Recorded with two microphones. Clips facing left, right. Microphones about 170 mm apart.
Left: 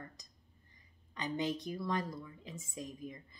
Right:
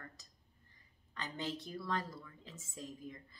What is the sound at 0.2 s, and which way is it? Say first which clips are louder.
A woman's voice: left 3 dB; 15° left (ahead or behind).